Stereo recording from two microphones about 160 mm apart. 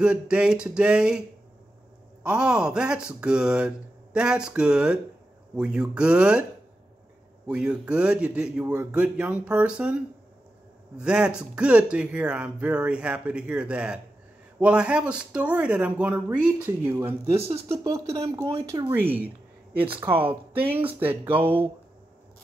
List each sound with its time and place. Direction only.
0.0 s speech: 5° right (ahead or behind)
2.2 s speech: 5° right (ahead or behind)
7.4 s speech: 5° right (ahead or behind)
21.4 s speech: 35° right (ahead or behind)